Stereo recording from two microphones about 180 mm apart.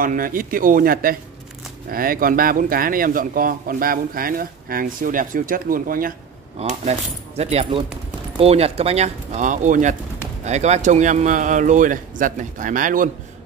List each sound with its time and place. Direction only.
0.0 s speech: 50° right (ahead or behind)
6.6 s speech: 40° right (ahead or behind)